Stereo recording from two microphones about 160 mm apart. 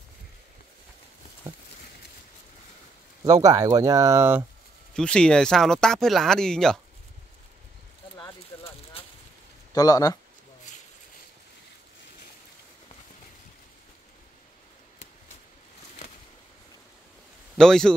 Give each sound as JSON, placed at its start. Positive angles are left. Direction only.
{"t": 3.3, "sound": "speech", "side_deg": -20}
{"t": 4.9, "sound": "speech", "side_deg": 5}
{"t": 9.0, "sound": "boat", "side_deg": 35}
{"t": 9.8, "sound": "speech", "side_deg": 25}
{"t": 10.7, "sound": "a sound", "side_deg": 50}
{"t": 17.6, "sound": "speech", "side_deg": 5}